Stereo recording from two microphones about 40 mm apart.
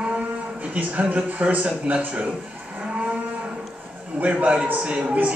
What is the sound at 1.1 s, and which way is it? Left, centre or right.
A man's voice, right.